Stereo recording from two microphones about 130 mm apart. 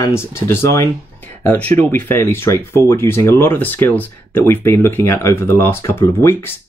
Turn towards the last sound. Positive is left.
turn(degrees=20)  # may be behind; listen again after turning